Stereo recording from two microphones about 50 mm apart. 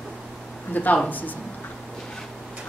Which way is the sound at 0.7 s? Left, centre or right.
Left.